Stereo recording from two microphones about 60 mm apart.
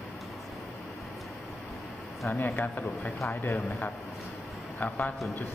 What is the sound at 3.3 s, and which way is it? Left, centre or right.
Speech, left.